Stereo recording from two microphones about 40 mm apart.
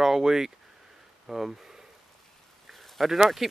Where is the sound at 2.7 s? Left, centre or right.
Centre.